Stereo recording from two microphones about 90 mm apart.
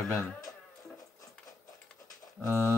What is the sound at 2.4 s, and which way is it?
Speech, 30° left (ahead or behind).